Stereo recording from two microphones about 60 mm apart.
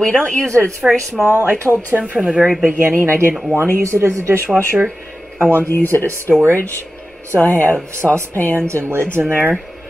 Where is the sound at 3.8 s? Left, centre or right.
Right.